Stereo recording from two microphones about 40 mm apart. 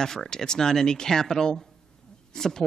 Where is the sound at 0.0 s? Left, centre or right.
Centre.